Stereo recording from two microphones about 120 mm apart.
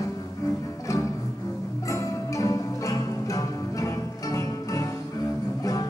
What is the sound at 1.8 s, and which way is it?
Music, 25° left (ahead or behind).